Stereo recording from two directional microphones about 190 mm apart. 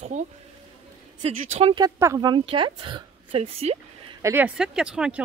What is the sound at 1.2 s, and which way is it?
Speech, 30° right (ahead or behind).